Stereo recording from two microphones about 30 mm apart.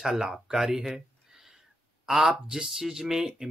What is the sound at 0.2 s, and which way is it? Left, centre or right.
Speech, right.